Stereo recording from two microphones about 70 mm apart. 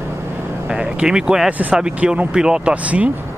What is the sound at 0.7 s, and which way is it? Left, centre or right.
Speech, centre.